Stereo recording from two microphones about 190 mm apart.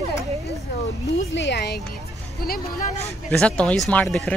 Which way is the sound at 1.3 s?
65° left (ahead or behind).